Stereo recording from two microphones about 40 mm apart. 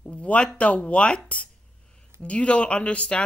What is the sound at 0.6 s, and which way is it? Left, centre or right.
Speech, left.